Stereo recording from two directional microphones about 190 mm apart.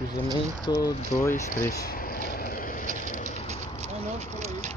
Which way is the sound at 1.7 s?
50° left (ahead or behind).